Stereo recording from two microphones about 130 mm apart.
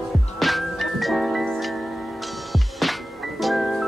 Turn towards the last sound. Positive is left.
turn(degrees=0)  # may be behind; listen again after turning